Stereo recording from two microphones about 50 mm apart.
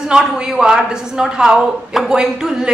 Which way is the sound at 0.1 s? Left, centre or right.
Centre.